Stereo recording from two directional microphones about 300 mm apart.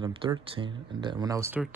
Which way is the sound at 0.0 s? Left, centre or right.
Centre.